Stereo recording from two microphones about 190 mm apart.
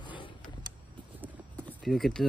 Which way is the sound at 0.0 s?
25° left (ahead or behind).